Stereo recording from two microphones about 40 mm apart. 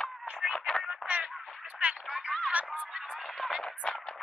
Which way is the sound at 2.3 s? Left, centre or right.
Centre.